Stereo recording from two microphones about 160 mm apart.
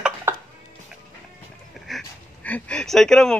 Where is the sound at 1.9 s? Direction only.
5° left (ahead or behind).